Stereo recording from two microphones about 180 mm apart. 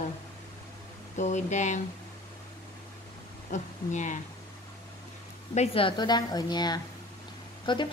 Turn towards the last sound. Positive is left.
turn(degrees=25)  # may be behind; listen again after turning